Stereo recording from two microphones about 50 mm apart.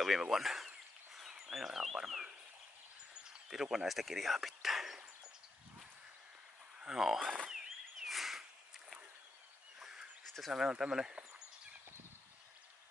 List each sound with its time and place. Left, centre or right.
0.2 s speech: centre
6.9 s speech: centre
7.3 s frog: centre
8.1 s a sound: centre
10.2 s a sound: centre
10.5 s speech: centre